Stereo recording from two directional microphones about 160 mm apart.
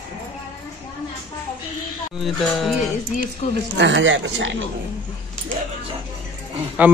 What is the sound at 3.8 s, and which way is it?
Speech, 90° right.